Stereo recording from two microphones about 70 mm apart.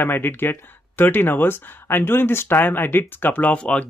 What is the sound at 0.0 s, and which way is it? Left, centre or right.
Speech, left.